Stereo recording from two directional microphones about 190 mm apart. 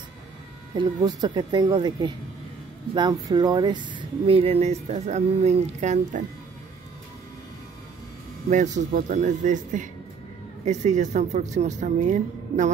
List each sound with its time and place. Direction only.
0.7 s speech: 20° right (ahead or behind); by 6.2 s 40° right (ahead or behind)
8.5 s speech: 40° right (ahead or behind)